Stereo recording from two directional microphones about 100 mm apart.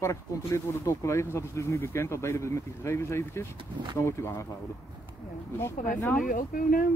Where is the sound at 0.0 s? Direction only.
30° left (ahead or behind).